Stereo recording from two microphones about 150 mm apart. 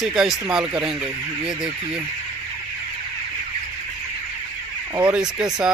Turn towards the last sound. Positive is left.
turn(degrees=-5)  # may be behind; listen again after turning